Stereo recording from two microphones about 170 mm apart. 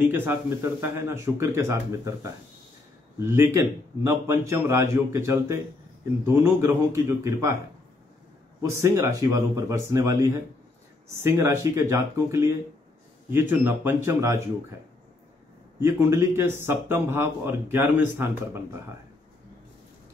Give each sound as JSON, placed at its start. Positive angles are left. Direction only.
{"t": 0.0, "sound": "speech", "side_deg": -10}
{"t": 3.2, "sound": "speech", "side_deg": -15}
{"t": 8.6, "sound": "speech", "side_deg": -15}
{"t": 15.8, "sound": "speech", "side_deg": -15}